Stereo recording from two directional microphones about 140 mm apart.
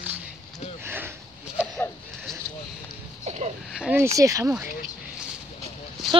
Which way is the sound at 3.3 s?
50° right (ahead or behind).